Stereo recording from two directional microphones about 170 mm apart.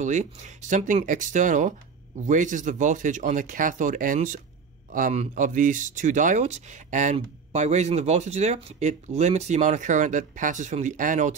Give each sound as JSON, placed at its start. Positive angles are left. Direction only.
{"t": 0.0, "sound": "speech", "side_deg": -45}